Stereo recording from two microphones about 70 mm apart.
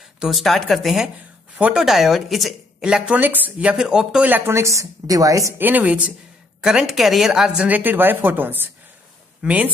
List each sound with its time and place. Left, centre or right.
0.2 s speech: centre
1.6 s speech: centre
3.1 s a woman's voice: right
3.7 s speech: centre
4.5 s a woman's voice: right
5.6 s a woman's voice: right; by 7.6 s centre
7.6 s a woman's voice: right
9.4 s speech: centre